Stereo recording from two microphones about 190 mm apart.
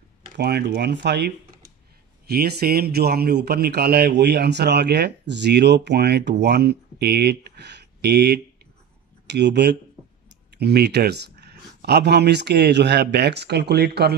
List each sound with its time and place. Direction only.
0.4 s a man's voice: 60° right (ahead or behind)